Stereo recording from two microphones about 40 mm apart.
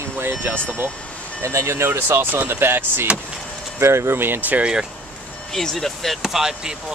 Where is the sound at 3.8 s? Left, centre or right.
Right.